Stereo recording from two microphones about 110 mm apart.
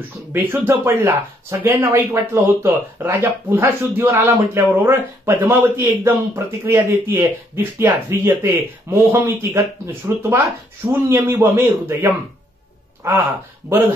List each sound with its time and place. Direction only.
0.3 s speech: 20° right (ahead or behind)